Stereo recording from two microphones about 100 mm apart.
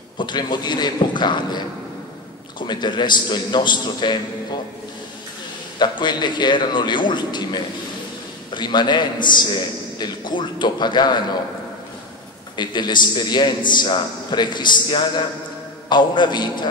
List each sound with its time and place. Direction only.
0.2 s a man's voice: 50° left (ahead or behind)
2.6 s a man's voice: 50° left (ahead or behind)
5.8 s a man's voice: 50° left (ahead or behind)
12.5 s a man's voice: 45° left (ahead or behind)